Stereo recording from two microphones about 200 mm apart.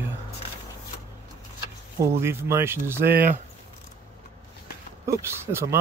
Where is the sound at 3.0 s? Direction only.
50° right (ahead or behind).